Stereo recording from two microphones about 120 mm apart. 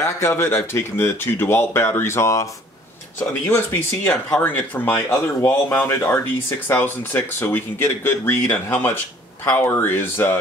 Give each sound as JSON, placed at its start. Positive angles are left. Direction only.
{"t": 0.0, "sound": "speech", "side_deg": 20}
{"t": 3.4, "sound": "speech", "side_deg": 20}